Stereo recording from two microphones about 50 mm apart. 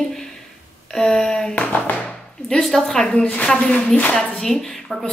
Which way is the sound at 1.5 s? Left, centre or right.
Left.